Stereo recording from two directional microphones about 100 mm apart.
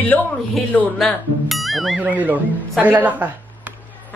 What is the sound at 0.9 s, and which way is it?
Speech, centre (ahead or behind).